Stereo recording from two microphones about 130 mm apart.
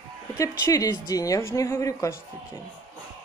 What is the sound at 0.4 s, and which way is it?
Speech, 25° left (ahead or behind).